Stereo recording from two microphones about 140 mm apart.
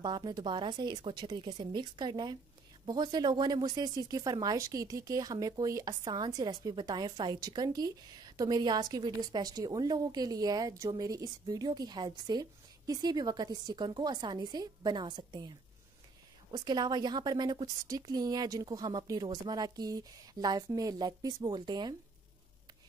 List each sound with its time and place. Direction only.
0.0 s a woman's voice: 30° right (ahead or behind)
16.5 s a woman's voice: 30° right (ahead or behind)